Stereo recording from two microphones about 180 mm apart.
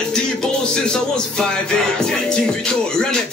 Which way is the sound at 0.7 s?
5° left (ahead or behind).